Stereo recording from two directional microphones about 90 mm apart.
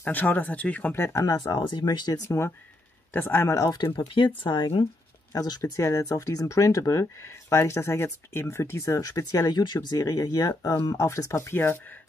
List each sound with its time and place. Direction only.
0.0 s speech: 20° left (ahead or behind)
0.9 s speech: 30° left (ahead or behind)
1.3 s speech: 50° left (ahead or behind); by 3.5 s 25° left (ahead or behind)
3.9 s speech: 70° left (ahead or behind)
4.4 s speech: 60° left (ahead or behind)
5.3 s speech: 45° left (ahead or behind)
5.6 s speech: 30° left (ahead or behind)